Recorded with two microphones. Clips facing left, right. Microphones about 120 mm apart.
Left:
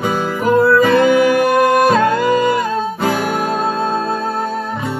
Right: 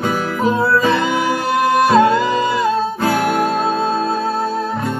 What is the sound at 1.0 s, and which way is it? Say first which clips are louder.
Music: left 6 dB; 50° left (ahead or behind).